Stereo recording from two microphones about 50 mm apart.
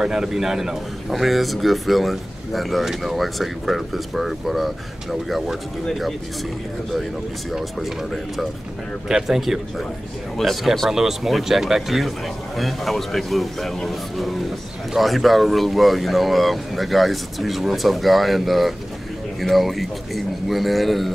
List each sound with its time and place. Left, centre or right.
0.0 s speech: centre
7.5 s speech: centre